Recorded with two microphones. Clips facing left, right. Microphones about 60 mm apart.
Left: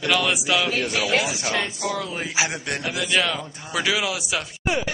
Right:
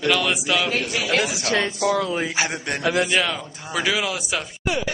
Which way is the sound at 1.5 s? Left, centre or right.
Right.